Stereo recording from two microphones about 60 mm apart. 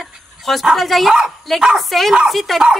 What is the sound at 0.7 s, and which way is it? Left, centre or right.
Speech, centre.